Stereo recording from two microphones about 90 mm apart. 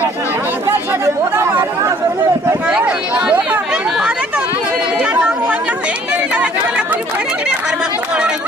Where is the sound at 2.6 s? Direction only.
10° right (ahead or behind).